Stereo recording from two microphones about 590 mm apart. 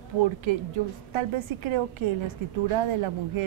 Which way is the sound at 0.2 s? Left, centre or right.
Right.